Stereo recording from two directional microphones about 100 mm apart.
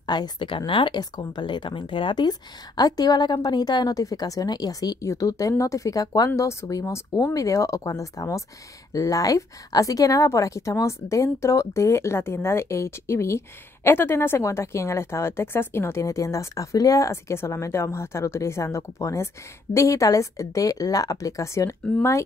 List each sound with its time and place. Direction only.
0.0 s a woman's voice: 45° left (ahead or behind)